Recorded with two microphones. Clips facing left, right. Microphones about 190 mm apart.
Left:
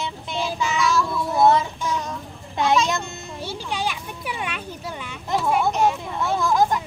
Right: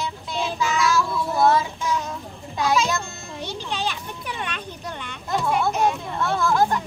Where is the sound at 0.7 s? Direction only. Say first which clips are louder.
Even; centre (ahead or behind).